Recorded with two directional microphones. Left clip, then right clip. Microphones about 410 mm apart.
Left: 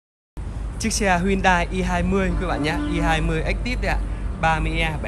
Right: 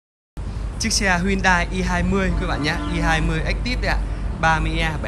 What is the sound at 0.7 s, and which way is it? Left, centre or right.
Speech, centre.